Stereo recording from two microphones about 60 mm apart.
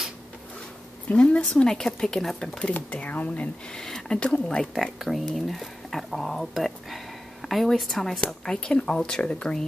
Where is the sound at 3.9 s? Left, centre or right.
Centre.